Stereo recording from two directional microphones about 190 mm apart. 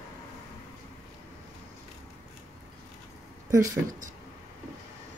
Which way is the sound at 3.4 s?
15° right (ahead or behind).